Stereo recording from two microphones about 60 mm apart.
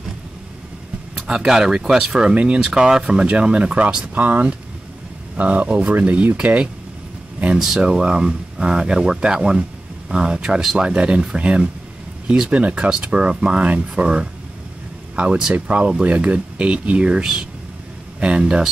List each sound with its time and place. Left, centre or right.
1.1 s speech: centre
7.5 s speech: centre
15.5 s speech: right